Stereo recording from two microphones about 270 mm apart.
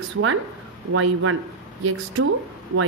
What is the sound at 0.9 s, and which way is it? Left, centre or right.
Speech, right.